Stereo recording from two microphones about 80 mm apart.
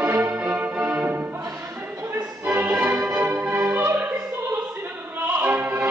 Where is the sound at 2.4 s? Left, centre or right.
Right.